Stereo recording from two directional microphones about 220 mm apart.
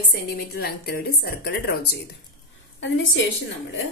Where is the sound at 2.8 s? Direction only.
60° left (ahead or behind).